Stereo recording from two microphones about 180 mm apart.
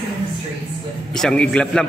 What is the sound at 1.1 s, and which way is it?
Speech, 5° left (ahead or behind).